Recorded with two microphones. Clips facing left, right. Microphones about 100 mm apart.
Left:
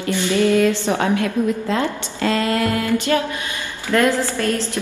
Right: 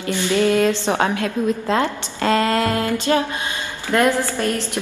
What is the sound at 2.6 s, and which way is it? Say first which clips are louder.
A woman's voice: even; 20° right (ahead or behind).